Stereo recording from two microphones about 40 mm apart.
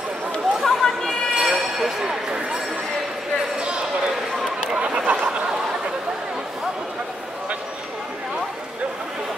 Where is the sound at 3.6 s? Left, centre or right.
Right.